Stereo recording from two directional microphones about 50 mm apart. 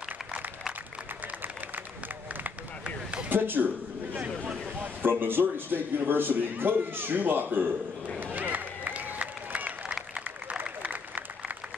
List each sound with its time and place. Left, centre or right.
3.3 s a man's voice: right
4.8 s a man's voice: right
8.2 s a sound: right
10.6 s applause: right